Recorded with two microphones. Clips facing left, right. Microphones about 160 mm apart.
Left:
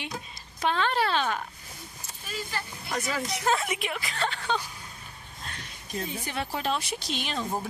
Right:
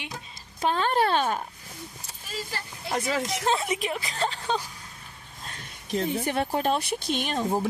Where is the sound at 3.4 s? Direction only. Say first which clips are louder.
Even; 30° right (ahead or behind).